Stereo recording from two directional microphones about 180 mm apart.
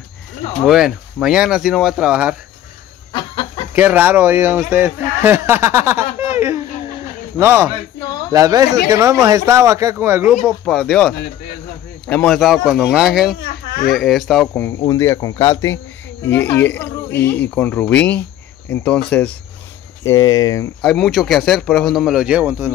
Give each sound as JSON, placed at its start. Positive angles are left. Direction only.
{"t": 0.6, "sound": "speech", "side_deg": 0}
{"t": 3.1, "sound": "chicken", "side_deg": 25}
{"t": 3.7, "sound": "speech", "side_deg": -10}
{"t": 6.3, "sound": "laughter", "side_deg": -15}
{"t": 7.3, "sound": "speech", "side_deg": -15}
{"t": 10.6, "sound": "speech", "side_deg": 5}
{"t": 13.4, "sound": "speech", "side_deg": 60}
{"t": 13.9, "sound": "speech", "side_deg": 0}
{"t": 14.5, "sound": "speech", "side_deg": 15}
{"t": 20.0, "sound": "speech", "side_deg": 15}
{"t": 20.8, "sound": "speech", "side_deg": 5}